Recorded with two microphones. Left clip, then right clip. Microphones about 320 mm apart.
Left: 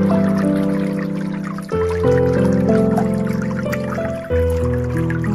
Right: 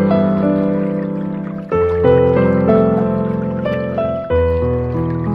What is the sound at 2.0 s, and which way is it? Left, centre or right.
Music, right.